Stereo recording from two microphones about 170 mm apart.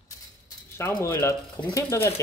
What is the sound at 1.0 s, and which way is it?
Speech, 15° left (ahead or behind).